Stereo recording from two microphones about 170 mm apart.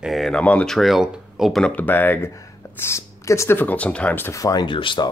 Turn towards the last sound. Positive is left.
turn(degrees=30)  # may be behind; listen again after turning